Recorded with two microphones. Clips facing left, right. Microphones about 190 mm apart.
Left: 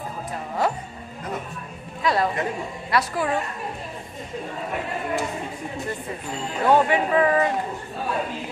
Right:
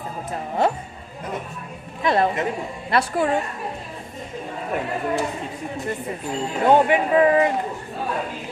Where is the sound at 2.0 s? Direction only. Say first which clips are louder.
Right 3 dB; 25° right (ahead or behind).